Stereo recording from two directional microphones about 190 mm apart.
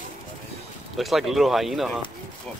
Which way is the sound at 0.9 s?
Centre (ahead or behind).